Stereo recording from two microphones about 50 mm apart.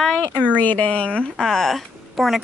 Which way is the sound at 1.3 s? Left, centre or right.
Centre.